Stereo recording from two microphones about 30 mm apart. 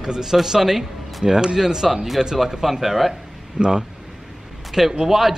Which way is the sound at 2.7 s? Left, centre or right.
Centre.